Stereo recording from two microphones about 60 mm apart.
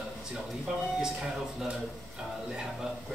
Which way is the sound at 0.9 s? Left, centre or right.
Centre.